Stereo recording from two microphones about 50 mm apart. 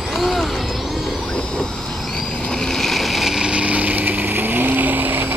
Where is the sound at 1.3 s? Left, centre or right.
Centre.